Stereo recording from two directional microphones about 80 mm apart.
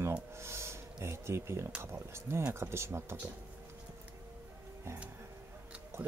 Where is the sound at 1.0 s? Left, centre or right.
Right.